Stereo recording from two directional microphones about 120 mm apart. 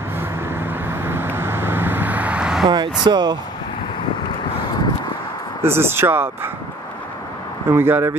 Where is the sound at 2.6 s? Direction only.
40° right (ahead or behind).